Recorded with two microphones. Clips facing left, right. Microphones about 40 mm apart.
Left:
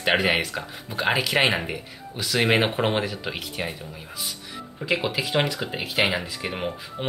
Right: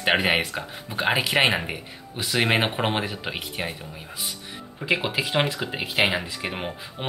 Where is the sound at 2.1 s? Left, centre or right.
Centre.